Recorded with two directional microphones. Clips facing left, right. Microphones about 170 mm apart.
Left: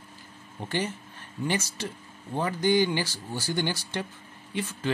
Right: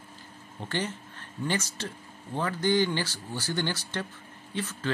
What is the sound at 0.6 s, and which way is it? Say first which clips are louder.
Speech: left 2 dB; 10° left (ahead or behind).